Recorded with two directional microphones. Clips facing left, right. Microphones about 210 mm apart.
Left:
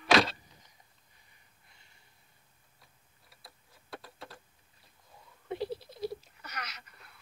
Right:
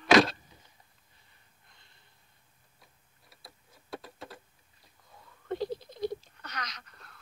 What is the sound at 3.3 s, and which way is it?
Clock, centre (ahead or behind).